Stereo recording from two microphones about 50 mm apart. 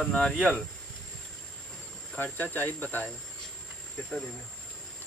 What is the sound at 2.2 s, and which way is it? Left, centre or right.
Speech, left.